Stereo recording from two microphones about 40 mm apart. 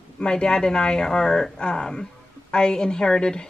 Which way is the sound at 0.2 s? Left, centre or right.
Left.